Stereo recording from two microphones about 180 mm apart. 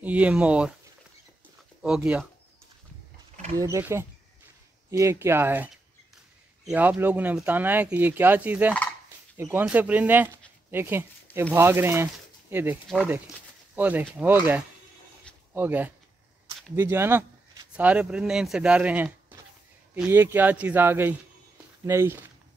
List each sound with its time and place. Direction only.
0.0 s speech: 10° right (ahead or behind)
1.8 s speech: 5° right (ahead or behind)
3.5 s speech: 15° right (ahead or behind)
13.7 s speech: 10° right (ahead or behind)